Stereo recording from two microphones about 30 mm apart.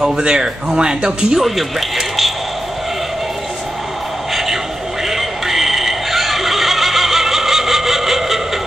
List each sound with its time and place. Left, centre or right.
0.2 s speech: right
1.4 s speech: centre
4.3 s music: centre
5.1 s neigh: centre